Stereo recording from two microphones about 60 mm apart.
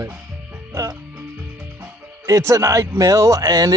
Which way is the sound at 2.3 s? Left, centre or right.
Right.